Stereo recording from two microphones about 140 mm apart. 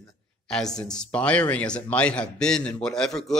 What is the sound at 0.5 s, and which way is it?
A man's voice, 5° left (ahead or behind).